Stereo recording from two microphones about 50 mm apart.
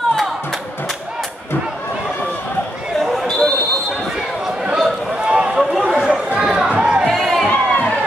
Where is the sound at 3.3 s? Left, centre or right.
Centre.